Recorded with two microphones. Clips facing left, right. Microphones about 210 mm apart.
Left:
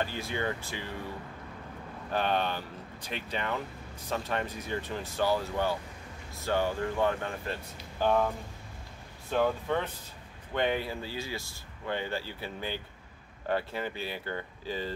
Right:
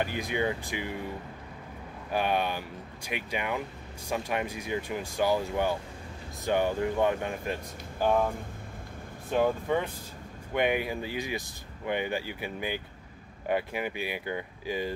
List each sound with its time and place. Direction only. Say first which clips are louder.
0.0 s speech: right 3 dB; 15° right (ahead or behind)
2.0 s speech: right 1 dB; 10° right (ahead or behind)
9.3 s speech: right 2 dB; 10° right (ahead or behind)